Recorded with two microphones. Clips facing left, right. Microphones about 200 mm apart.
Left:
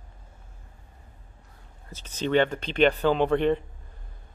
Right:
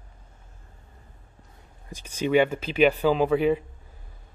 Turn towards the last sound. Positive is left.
turn(degrees=-5)  # may be behind; listen again after turning